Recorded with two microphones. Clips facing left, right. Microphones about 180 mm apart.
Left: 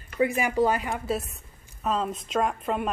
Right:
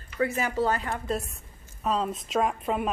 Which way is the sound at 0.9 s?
Centre (ahead or behind).